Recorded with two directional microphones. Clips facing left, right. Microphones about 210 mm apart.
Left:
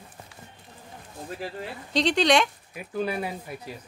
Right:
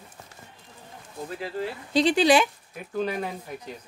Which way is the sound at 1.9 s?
5° right (ahead or behind).